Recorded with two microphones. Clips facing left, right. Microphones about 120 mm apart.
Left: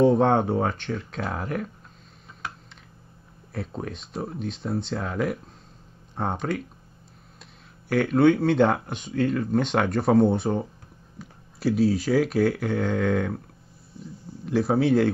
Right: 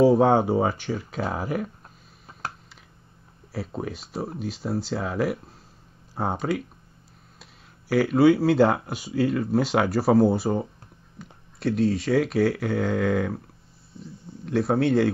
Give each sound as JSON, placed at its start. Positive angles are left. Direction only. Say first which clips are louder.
{"t": 0.0, "sound": "speech", "louder": "right 1 dB", "side_deg": -5}
{"t": 3.5, "sound": "speech", "louder": "right 1 dB", "side_deg": -5}
{"t": 7.9, "sound": "speech", "louder": "right 1 dB", "side_deg": -5}
{"t": 14.4, "sound": "speech", "louder": "even", "side_deg": 0}